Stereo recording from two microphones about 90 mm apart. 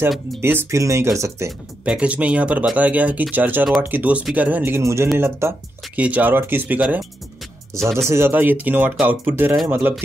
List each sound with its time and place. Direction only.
0.4 s speech: 25° right (ahead or behind)
1.9 s speech: 15° right (ahead or behind)
4.8 s speech: 30° right (ahead or behind)
5.9 s speech: 15° right (ahead or behind)
7.7 s speech: 35° right (ahead or behind)